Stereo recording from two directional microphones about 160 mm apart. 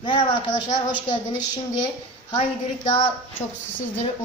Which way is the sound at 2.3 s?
35° left (ahead or behind).